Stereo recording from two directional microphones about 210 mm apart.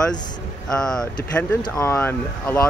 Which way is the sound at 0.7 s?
5° left (ahead or behind).